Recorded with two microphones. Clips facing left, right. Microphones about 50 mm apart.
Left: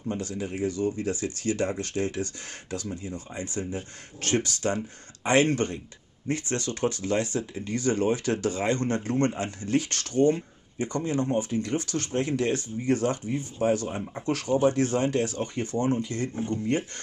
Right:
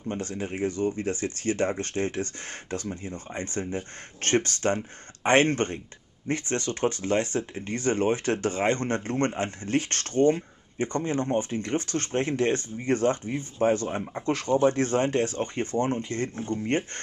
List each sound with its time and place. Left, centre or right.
0.1 s speech: right